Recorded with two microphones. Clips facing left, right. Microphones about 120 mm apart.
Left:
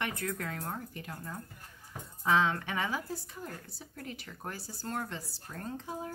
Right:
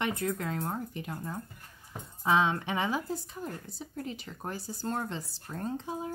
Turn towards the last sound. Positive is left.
turn(degrees=-20)  # may be behind; listen again after turning